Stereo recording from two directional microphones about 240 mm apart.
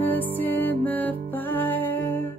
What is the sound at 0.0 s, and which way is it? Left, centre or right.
Music, centre.